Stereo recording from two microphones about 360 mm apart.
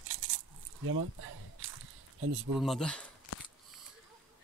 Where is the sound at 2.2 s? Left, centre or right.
Right.